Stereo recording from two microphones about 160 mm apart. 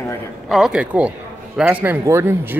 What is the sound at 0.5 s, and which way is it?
Speech, 5° right (ahead or behind).